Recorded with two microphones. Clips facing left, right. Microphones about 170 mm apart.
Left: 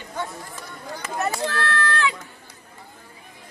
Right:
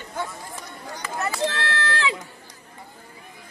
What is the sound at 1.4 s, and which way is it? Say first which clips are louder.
Run: left 1 dB; 25° right (ahead or behind).